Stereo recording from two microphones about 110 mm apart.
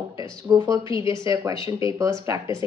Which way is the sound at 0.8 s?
50° left (ahead or behind).